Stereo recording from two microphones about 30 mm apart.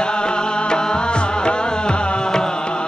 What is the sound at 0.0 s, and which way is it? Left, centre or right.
Music, left.